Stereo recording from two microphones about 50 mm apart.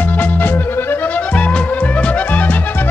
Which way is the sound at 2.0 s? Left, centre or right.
Left.